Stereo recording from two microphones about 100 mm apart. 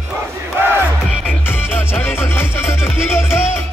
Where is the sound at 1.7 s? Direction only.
25° left (ahead or behind).